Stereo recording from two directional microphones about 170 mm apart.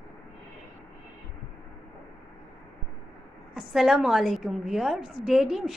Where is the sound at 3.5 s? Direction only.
5° right (ahead or behind).